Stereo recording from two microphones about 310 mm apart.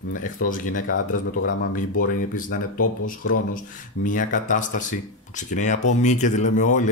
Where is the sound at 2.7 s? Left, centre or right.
Left.